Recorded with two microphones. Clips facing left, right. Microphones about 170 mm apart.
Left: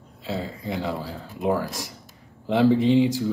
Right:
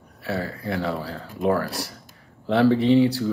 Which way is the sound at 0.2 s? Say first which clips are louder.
Right 2 dB; 15° left (ahead or behind).